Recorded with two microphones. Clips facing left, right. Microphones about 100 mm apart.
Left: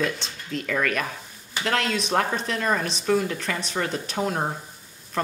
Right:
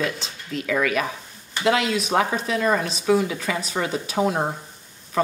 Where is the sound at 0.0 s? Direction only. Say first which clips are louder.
Even; centre (ahead or behind).